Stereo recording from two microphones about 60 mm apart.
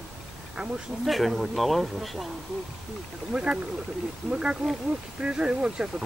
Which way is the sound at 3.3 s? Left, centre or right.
Centre.